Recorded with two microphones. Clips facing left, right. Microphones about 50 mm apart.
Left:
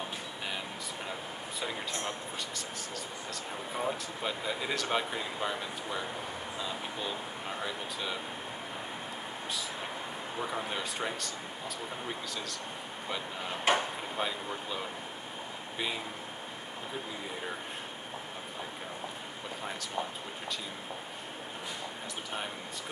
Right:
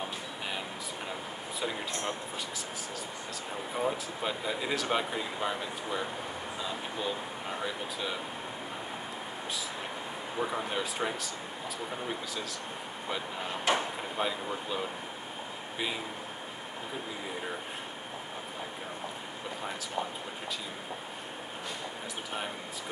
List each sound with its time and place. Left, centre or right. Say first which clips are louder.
3.7 s speech: right 2 dB; centre
10.4 s speech: right 3 dB; centre
13.7 s a sound: left 1 dB; left
14.1 s speech: right 3 dB; centre